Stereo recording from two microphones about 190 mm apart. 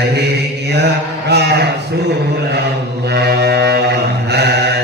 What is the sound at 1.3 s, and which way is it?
Speech, 60° right (ahead or behind).